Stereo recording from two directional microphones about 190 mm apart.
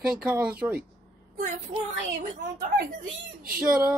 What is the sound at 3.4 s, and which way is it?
Speech, 50° right (ahead or behind).